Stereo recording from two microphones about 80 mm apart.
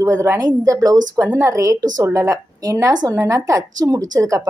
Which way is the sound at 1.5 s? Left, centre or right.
Right.